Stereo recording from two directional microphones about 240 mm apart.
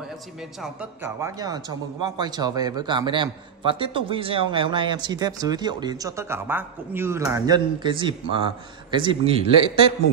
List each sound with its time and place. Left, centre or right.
0.4 s a man's voice: centre; by 9.8 s right